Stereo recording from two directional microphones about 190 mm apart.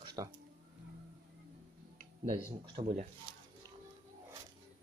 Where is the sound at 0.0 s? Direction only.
20° right (ahead or behind).